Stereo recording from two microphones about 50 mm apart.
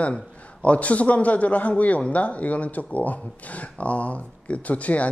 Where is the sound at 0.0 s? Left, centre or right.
Left.